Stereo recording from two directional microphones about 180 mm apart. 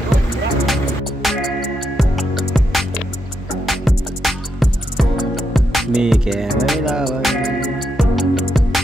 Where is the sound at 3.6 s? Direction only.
Centre (ahead or behind).